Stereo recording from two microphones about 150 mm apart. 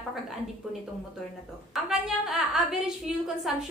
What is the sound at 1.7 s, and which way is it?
A woman's voice, centre (ahead or behind).